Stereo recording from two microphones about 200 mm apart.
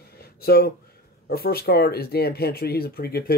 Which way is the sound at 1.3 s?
50° left (ahead or behind).